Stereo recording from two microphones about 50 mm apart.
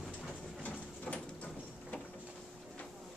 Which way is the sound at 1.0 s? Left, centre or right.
Left.